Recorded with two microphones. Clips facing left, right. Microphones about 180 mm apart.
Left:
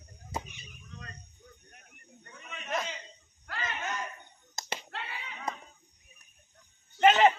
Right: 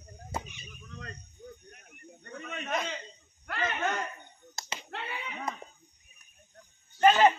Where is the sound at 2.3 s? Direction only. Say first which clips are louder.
Right 2 dB; 55° right (ahead or behind).